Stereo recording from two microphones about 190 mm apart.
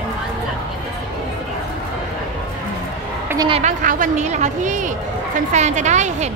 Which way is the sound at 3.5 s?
40° right (ahead or behind).